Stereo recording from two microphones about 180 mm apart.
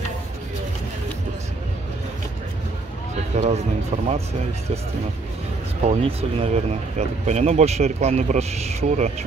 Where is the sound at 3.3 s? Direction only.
40° right (ahead or behind).